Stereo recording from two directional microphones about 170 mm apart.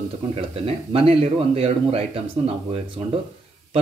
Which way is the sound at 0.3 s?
35° right (ahead or behind).